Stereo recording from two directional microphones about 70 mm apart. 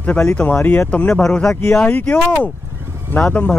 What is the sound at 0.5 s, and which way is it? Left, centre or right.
Speech, left.